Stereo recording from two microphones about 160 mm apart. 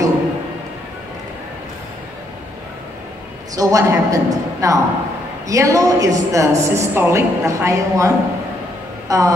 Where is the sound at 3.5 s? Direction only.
20° right (ahead or behind).